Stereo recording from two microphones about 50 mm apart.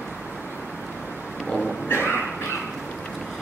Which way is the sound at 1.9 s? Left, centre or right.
Left.